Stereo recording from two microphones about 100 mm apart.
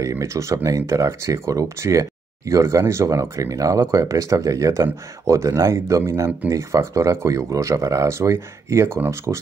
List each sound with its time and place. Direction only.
0.0 s speech: 30° right (ahead or behind)